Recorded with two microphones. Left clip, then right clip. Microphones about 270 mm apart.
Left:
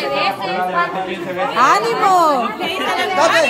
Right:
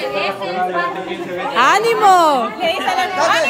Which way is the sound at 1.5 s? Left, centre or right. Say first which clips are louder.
Right 1 dB; centre.